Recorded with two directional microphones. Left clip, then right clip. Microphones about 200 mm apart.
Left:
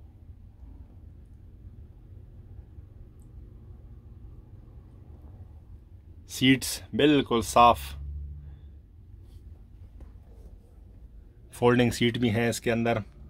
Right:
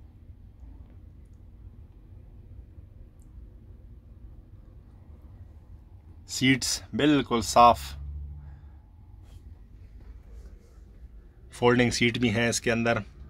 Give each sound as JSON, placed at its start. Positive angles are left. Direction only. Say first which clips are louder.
{"t": 6.3, "sound": "speech", "louder": "even", "side_deg": 10}
{"t": 11.5, "sound": "speech", "louder": "even", "side_deg": 20}